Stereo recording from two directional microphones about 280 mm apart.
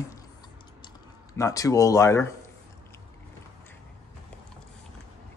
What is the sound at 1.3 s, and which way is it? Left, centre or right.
Speech, centre.